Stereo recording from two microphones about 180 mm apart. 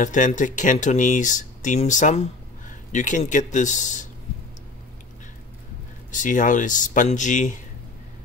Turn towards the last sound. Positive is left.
turn(degrees=45)  # may be behind; listen again after turning